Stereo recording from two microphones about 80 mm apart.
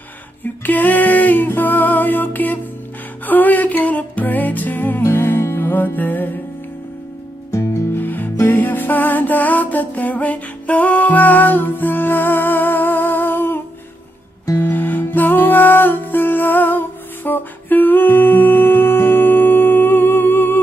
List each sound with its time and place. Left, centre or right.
0.4 s music: left
7.5 s music: left
14.6 s music: left